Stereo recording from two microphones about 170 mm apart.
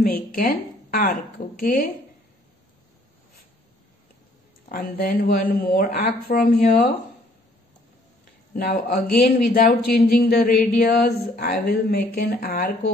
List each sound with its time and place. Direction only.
0.0 s a sound: 60° left (ahead or behind)
1.6 s a man's voice: 60° left (ahead or behind)
4.6 s a man's voice: 60° left (ahead or behind)
8.5 s a man's voice: 55° left (ahead or behind)